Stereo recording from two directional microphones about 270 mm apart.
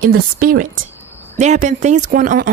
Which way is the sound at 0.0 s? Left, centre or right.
Right.